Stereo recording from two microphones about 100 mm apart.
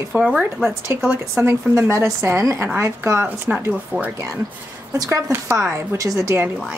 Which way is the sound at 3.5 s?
10° right (ahead or behind).